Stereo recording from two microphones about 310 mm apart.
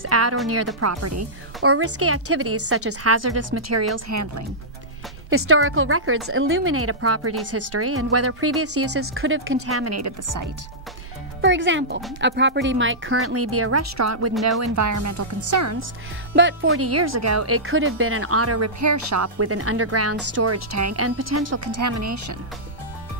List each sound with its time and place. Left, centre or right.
0.0 s speech: right
5.3 s speech: right
10.2 s speech: right
11.4 s speech: right
16.3 s speech: right